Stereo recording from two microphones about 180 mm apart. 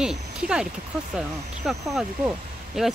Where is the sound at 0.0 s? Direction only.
5° right (ahead or behind).